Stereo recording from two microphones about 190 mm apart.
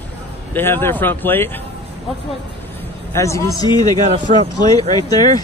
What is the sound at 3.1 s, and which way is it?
Speech, 15° left (ahead or behind).